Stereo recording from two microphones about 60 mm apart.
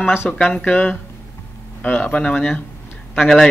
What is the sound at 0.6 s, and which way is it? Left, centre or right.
Speech, left.